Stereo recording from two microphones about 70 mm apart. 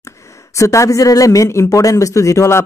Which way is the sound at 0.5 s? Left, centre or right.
Left.